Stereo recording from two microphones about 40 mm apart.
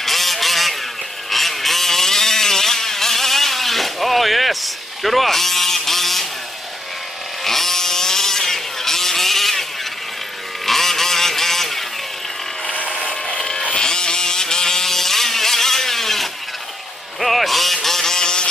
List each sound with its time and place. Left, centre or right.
0.0 s vehicle: centre
7.4 s vehicle: centre
13.1 s a sound: centre
13.7 s vehicle: centre
17.2 s music: centre
17.8 s a sound: centre